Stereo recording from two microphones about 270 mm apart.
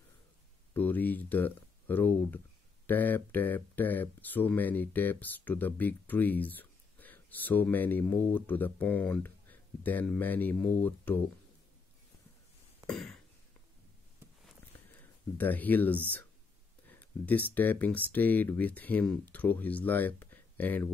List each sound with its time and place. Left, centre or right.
0.7 s speech: centre
12.8 s a sound: centre
15.0 s speech: centre